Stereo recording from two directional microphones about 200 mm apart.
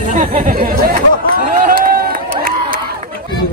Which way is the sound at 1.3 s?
45° right (ahead or behind).